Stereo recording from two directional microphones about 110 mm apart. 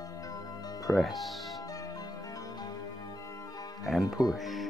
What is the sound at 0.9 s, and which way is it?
Speech, centre (ahead or behind).